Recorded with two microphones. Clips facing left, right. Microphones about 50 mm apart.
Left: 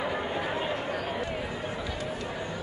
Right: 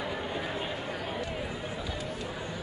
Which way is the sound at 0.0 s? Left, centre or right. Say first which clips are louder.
Left 4 dB; centre.